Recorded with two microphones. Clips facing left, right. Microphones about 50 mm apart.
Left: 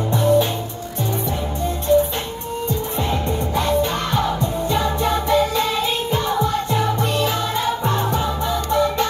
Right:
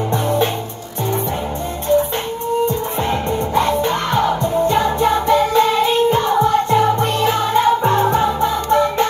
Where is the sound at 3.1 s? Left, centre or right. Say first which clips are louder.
Right 5 dB; right.